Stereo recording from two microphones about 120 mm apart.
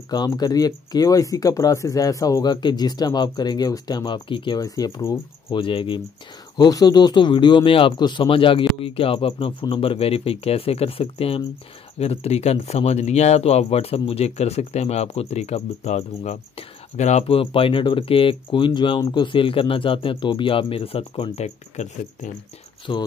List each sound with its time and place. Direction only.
0.1 s speech: 35° left (ahead or behind)
4.6 s speech: 30° left (ahead or behind)
5.5 s speech: 45° left (ahead or behind)
6.5 s speech: 35° left (ahead or behind); by 17.2 s 75° left (ahead or behind)
17.3 s speech: 50° left (ahead or behind)
22.9 s speech: 45° left (ahead or behind)